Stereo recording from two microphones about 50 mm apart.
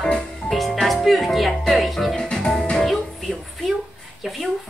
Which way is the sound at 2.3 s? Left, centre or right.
Centre.